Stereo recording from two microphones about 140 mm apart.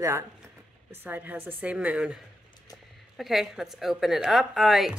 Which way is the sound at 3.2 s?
Centre (ahead or behind).